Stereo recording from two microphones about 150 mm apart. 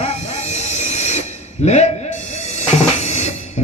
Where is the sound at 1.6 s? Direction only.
50° left (ahead or behind).